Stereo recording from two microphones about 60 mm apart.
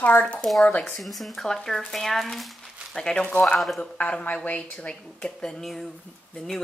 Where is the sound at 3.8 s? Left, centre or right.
Left.